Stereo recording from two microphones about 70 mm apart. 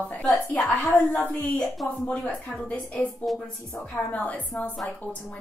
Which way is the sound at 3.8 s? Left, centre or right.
Left.